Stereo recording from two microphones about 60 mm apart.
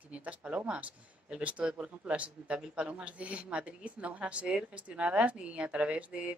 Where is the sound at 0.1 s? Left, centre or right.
Right.